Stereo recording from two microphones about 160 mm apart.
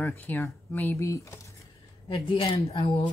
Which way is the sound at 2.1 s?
35° left (ahead or behind).